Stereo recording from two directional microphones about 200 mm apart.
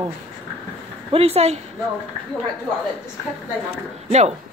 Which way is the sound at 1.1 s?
30° right (ahead or behind).